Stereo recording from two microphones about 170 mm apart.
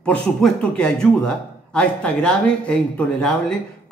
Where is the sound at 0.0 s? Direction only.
5° left (ahead or behind).